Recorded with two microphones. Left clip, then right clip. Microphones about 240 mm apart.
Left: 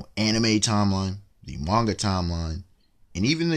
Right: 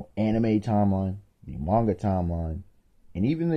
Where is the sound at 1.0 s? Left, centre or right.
Centre.